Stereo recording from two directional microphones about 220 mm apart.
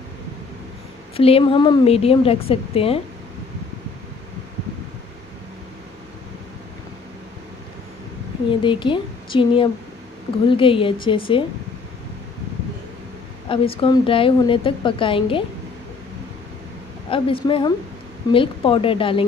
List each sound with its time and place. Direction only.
1.1 s a woman's voice: 25° left (ahead or behind)
8.5 s a woman's voice: 20° left (ahead or behind)
13.5 s a woman's voice: 25° left (ahead or behind)
17.1 s a woman's voice: 25° left (ahead or behind)